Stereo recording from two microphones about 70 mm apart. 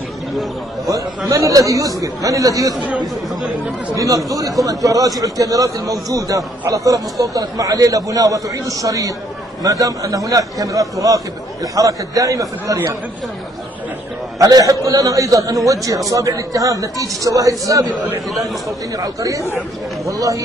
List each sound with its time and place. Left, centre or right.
0.3 s a man's voice: centre
0.9 s speech: right
3.9 s a man's voice: right
14.4 s a man's voice: right
18.9 s a man's voice: right